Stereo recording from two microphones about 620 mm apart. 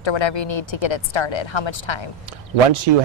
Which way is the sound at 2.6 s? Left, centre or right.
Right.